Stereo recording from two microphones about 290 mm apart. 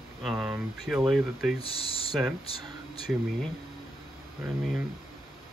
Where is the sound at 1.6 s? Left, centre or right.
Centre.